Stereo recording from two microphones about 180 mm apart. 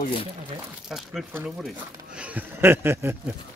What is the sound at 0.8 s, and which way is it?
Speech, centre (ahead or behind).